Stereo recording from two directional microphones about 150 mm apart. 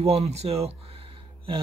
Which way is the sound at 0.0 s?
45° right (ahead or behind).